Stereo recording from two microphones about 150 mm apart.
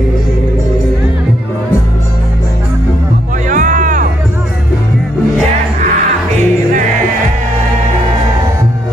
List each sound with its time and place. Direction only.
3.4 s music: 60° right (ahead or behind)